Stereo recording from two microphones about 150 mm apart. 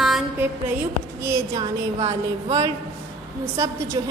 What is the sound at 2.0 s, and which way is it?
Speech, 45° right (ahead or behind).